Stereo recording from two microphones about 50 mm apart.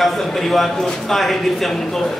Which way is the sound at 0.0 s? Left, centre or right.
Centre.